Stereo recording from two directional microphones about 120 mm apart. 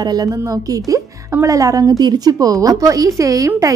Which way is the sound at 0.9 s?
25° right (ahead or behind).